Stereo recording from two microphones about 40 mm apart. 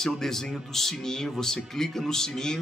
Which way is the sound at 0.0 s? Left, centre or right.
Centre.